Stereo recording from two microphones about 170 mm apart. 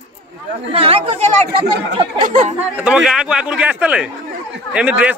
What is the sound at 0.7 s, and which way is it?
Speech, 35° right (ahead or behind).